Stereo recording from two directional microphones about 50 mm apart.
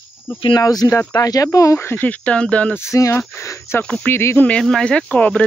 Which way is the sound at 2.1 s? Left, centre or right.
Left.